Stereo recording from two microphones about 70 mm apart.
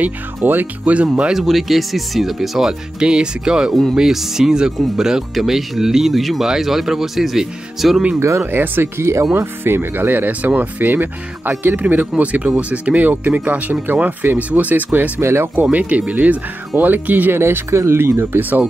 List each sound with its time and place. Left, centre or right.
0.0 s speech: right
1.4 s speech: centre
8.2 s speech: right
9.3 s speech: right
15.1 s speech: right
15.5 s speech: right